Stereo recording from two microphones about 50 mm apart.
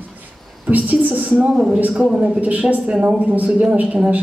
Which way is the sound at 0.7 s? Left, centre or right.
Right.